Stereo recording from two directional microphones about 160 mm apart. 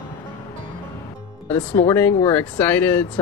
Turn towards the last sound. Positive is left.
turn(degrees=10)  # may be behind; listen again after turning